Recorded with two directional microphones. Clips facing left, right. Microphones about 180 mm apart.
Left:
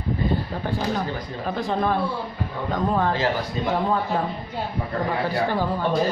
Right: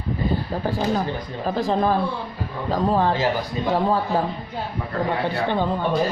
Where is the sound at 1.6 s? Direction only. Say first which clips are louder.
Right 3 dB; 35° right (ahead or behind).